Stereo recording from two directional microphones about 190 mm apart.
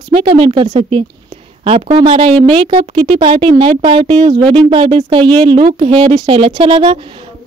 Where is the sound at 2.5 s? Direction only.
30° right (ahead or behind).